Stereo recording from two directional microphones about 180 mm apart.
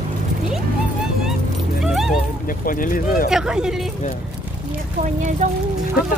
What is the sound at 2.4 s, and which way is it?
Speech, 50° left (ahead or behind).